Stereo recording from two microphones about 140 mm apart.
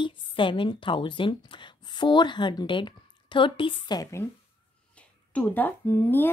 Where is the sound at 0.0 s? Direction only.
35° left (ahead or behind).